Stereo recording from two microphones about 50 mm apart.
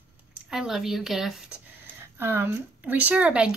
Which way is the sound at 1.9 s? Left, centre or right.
Right.